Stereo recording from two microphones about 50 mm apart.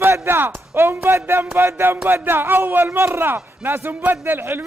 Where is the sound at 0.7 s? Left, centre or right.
Right.